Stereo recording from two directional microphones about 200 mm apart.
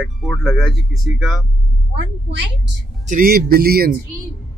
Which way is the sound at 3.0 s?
45° right (ahead or behind).